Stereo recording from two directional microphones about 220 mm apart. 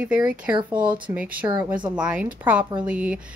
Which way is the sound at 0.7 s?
5° right (ahead or behind).